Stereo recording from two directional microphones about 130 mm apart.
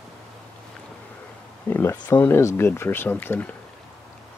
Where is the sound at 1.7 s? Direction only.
20° left (ahead or behind).